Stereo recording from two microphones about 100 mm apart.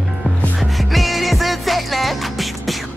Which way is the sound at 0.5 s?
Centre (ahead or behind).